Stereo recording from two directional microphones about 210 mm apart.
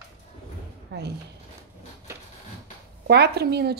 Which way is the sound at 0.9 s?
55° right (ahead or behind).